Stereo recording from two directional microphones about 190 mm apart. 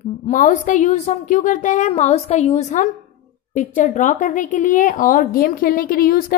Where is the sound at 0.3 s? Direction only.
45° left (ahead or behind).